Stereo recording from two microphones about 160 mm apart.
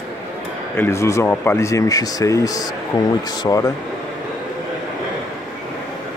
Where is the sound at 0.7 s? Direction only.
15° left (ahead or behind).